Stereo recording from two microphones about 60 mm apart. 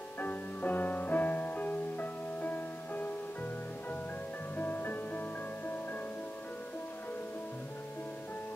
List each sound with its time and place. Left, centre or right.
0.2 s music: left
4.6 s music: left